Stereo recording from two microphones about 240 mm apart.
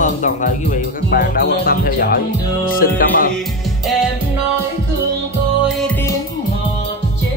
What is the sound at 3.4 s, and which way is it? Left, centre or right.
Music, centre.